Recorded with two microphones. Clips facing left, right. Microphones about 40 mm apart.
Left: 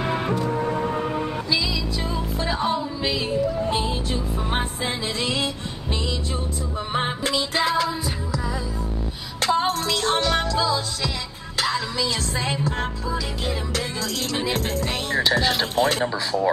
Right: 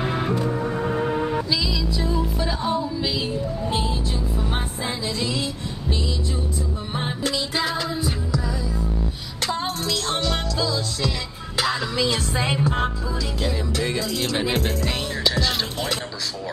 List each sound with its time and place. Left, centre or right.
2.4 s music: left
6.9 s music: left
7.2 s music: left
9.4 s music: left
11.7 s music: right
13.9 s music: right
15.0 s music: left
15.6 s speech: left